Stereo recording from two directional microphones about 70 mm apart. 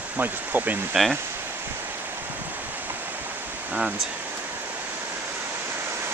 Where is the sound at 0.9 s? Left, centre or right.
Centre.